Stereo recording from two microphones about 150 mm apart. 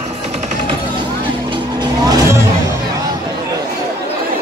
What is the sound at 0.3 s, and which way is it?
Music, 50° right (ahead or behind).